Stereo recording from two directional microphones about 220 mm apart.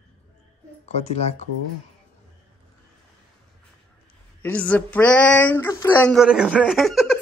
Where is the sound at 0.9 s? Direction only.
30° left (ahead or behind).